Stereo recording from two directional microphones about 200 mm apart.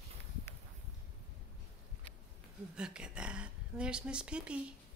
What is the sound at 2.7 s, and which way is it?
A woman's voice, 5° right (ahead or behind).